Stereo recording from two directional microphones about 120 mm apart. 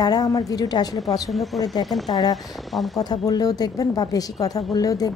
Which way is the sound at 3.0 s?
35° left (ahead or behind).